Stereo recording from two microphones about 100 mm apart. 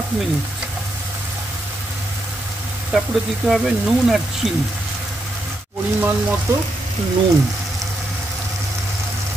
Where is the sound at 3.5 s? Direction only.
5° right (ahead or behind).